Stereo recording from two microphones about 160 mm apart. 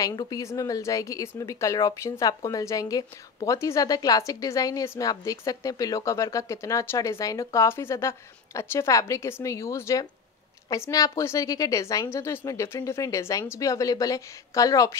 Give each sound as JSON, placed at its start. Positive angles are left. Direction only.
{"t": 0.0, "sound": "speech", "side_deg": 25}